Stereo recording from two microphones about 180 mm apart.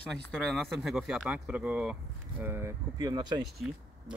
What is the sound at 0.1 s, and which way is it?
Speech, 5° left (ahead or behind).